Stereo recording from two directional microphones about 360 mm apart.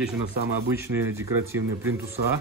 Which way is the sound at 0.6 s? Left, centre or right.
Centre.